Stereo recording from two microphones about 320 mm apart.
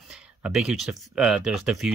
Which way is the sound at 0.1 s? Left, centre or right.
Centre.